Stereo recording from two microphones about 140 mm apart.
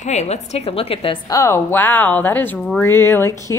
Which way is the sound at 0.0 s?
55° left (ahead or behind).